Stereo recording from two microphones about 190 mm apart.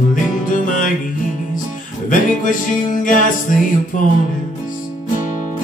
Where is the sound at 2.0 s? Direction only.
45° left (ahead or behind).